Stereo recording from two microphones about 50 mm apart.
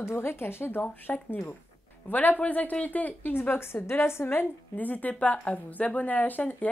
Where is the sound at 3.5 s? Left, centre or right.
Left.